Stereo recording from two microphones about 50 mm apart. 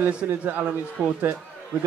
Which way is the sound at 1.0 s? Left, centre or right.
Right.